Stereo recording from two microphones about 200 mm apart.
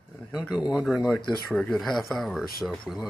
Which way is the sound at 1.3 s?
Centre (ahead or behind).